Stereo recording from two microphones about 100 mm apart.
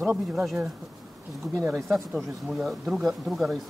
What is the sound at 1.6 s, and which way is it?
Speech, 30° right (ahead or behind).